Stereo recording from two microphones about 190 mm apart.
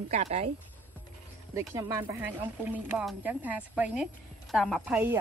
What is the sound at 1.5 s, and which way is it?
Speech, 15° right (ahead or behind).